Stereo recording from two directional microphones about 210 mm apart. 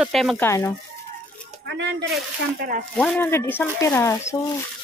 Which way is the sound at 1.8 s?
55° right (ahead or behind).